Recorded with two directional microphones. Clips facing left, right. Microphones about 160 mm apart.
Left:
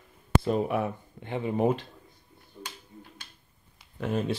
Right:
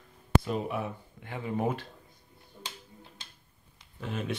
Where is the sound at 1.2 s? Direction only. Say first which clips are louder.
Left 5 dB; 20° left (ahead or behind).